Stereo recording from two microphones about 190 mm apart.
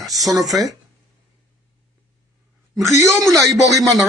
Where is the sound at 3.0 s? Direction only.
15° right (ahead or behind).